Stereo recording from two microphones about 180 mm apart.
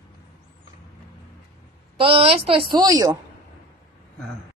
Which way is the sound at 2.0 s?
30° right (ahead or behind).